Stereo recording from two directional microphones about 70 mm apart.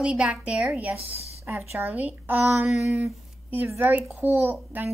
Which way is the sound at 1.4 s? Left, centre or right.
Right.